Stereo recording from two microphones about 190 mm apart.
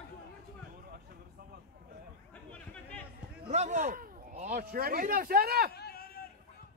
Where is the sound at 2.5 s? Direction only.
5° left (ahead or behind).